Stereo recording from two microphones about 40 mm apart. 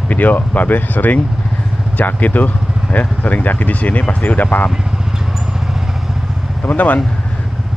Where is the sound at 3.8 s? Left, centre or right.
Left.